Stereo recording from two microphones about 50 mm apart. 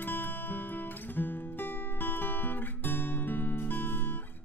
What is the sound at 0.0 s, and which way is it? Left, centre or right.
Music, left.